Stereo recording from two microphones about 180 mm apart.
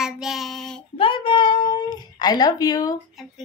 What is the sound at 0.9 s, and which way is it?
Speech, 30° left (ahead or behind).